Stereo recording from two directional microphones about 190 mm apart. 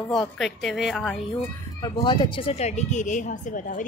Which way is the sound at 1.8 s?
25° left (ahead or behind).